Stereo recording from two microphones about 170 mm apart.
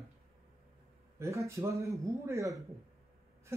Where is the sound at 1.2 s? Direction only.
15° right (ahead or behind).